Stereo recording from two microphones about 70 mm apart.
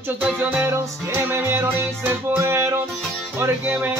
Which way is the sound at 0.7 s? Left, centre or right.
Right.